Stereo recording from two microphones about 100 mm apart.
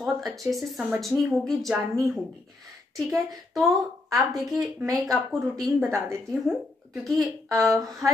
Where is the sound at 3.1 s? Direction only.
Centre (ahead or behind).